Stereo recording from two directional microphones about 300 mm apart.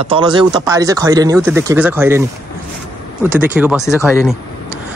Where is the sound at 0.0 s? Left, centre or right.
Centre.